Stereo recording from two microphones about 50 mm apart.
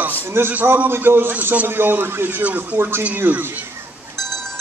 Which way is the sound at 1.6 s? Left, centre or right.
Right.